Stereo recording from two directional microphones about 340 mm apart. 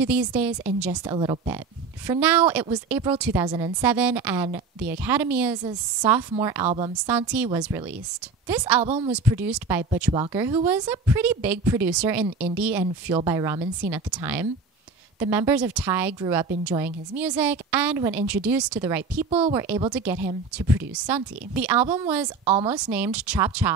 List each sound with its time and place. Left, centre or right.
0.0 s a woman's voice: centre
1.1 s a woman's voice: centre
7.1 s a woman's voice: centre
8.8 s speech: centre
9.1 s a woman's voice: centre
12.8 s a woman's voice: centre
22.4 s speech: centre
22.7 s a woman's voice: centre